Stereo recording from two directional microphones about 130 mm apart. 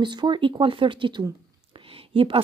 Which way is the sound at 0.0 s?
35° right (ahead or behind).